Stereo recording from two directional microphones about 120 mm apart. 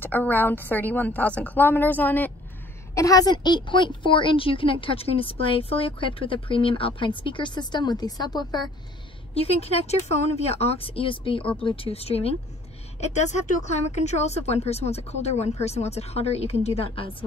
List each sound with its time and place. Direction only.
0.0 s a woman's voice: 15° left (ahead or behind)
2.9 s a woman's voice: 30° left (ahead or behind)
9.3 s speech: 55° left (ahead or behind)
13.0 s speech: 75° left (ahead or behind); by 17.1 s 50° left (ahead or behind)